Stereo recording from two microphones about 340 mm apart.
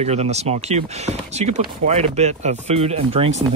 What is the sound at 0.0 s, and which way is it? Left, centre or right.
Speech, centre.